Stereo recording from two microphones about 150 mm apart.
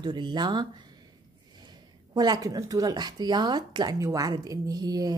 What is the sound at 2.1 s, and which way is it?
Speech, 25° right (ahead or behind).